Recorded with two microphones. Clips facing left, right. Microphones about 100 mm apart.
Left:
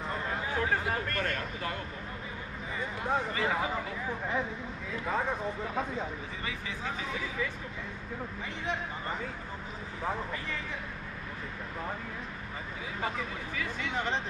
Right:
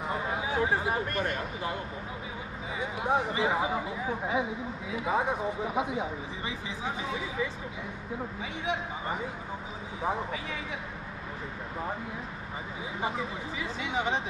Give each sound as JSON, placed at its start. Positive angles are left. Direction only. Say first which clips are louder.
{"t": 0.1, "sound": "speech", "louder": "right 3 dB", "side_deg": -10}
{"t": 2.8, "sound": "speech", "louder": "right 3 dB", "side_deg": -15}
{"t": 8.6, "sound": "speech", "louder": "right 3 dB", "side_deg": -15}
{"t": 13.0, "sound": "speech", "louder": "right 2 dB", "side_deg": -20}